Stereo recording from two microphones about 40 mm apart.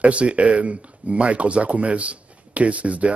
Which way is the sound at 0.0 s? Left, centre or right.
Right.